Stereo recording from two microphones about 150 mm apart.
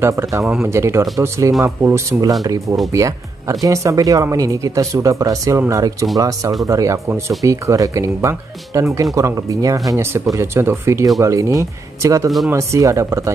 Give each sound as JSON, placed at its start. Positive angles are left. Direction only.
{"t": 0.0, "sound": "speech", "side_deg": -20}